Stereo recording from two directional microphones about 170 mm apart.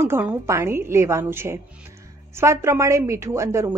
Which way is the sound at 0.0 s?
15° right (ahead or behind).